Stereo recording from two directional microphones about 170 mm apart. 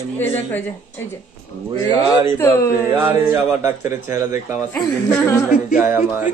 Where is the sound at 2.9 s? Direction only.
15° right (ahead or behind).